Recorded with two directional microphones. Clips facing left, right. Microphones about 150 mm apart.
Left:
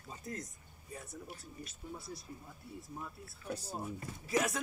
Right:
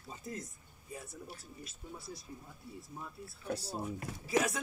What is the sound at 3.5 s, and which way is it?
Speech, 75° right (ahead or behind).